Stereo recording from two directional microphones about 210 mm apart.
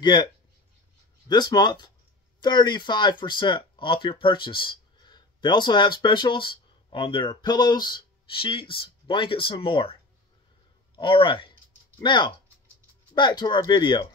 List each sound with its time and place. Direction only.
0.0 s speech: 20° left (ahead or behind)
1.3 s speech: 20° left (ahead or behind)
11.0 s speech: 25° left (ahead or behind)